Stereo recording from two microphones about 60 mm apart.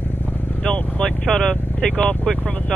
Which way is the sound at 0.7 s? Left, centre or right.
Centre.